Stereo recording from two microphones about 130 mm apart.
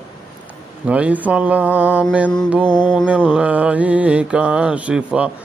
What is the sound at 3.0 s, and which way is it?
Mantra, 10° right (ahead or behind).